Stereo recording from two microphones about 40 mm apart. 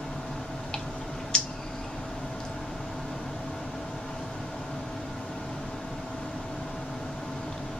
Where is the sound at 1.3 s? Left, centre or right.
Left.